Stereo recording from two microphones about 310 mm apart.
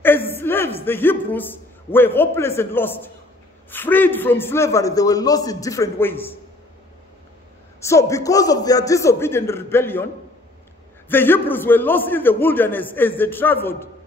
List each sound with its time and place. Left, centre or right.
0.0 s a sound: centre
1.9 s a man's voice: centre
7.8 s a man's voice: centre
11.1 s a man's voice: centre